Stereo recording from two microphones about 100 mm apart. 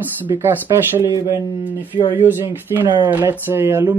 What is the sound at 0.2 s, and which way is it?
Speech, 20° right (ahead or behind).